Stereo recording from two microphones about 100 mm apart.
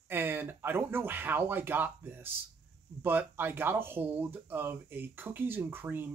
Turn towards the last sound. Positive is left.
turn(degrees=-20)  # may be behind; listen again after turning